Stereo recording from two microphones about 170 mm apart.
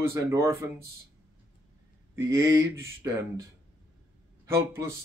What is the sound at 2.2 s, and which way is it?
Speech, 15° right (ahead or behind).